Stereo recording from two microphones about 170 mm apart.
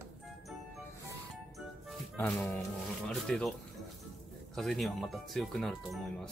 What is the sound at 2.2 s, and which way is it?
Speech, 10° left (ahead or behind).